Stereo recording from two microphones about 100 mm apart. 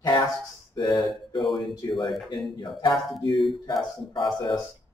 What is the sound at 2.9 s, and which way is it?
Speech, centre (ahead or behind).